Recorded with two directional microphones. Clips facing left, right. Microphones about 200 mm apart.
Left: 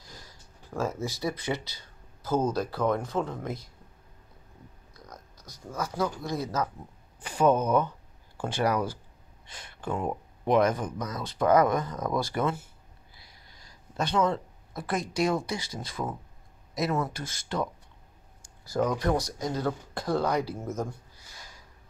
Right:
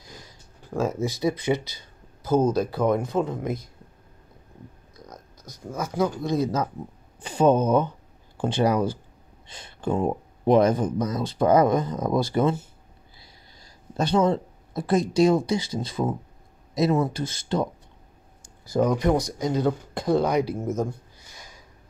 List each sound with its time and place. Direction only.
0.1 s speech: 20° right (ahead or behind)
5.1 s speech: 20° right (ahead or behind)
18.7 s speech: 20° right (ahead or behind)